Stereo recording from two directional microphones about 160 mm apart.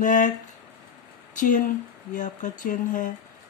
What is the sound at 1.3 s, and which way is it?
Speech, 55° left (ahead or behind).